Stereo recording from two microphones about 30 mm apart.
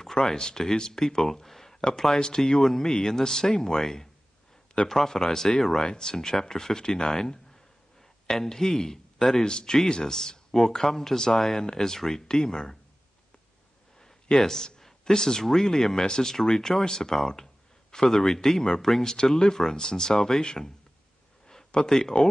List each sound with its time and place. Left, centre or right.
0.0 s speech: centre
9.4 s speech: left
10.7 s speech: centre
11.6 s speech: left
14.0 s a sound: centre
15.4 s speech: centre
19.0 s speech: left